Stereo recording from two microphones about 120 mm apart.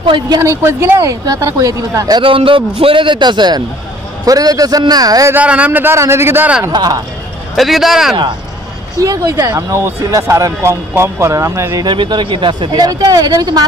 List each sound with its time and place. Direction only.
0.0 s a man's voice: 45° right (ahead or behind)
0.4 s speech: 25° right (ahead or behind)
2.2 s a man's voice: 45° right (ahead or behind); by 5.3 s 30° right (ahead or behind)
5.3 s a man's voice: 10° right (ahead or behind)
6.7 s speech: 35° right (ahead or behind)
7.5 s speech: centre (ahead or behind)
8.9 s speech: 30° right (ahead or behind)
11.8 s speech: 40° right (ahead or behind)